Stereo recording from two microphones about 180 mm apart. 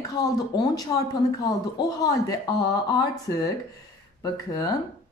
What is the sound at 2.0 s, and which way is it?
Speech, 20° left (ahead or behind).